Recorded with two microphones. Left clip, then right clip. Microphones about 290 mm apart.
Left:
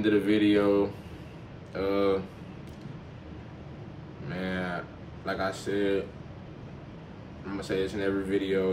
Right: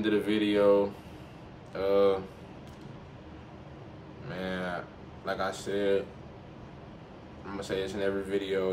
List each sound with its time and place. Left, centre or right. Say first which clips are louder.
0.0 s speech: left 4 dB; centre
4.3 s speech: left 1 dB; centre
7.5 s speech: left 2 dB; centre